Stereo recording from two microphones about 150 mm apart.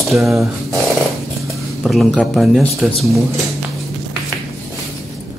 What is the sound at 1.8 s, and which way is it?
Speech, centre (ahead or behind).